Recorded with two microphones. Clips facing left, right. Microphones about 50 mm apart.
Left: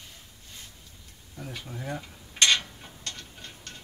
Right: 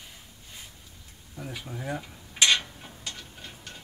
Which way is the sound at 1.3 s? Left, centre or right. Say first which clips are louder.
Right 1 dB; centre.